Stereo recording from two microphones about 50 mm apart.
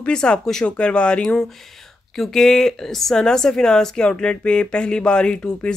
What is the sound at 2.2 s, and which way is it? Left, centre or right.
Speech, centre.